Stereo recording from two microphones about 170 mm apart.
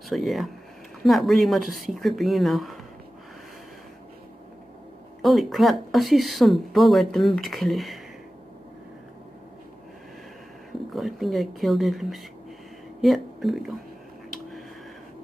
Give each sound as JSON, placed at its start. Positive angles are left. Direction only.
{"t": 0.1, "sound": "speech", "side_deg": 0}
{"t": 5.2, "sound": "speech", "side_deg": 0}
{"t": 10.9, "sound": "a woman's voice", "side_deg": 0}